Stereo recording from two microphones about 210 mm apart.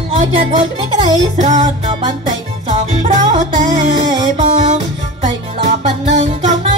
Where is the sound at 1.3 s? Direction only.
35° right (ahead or behind).